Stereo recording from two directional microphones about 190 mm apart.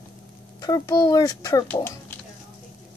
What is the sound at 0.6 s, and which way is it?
A child's voice, 20° left (ahead or behind).